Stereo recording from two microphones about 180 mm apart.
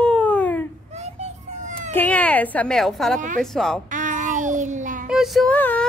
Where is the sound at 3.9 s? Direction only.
45° right (ahead or behind).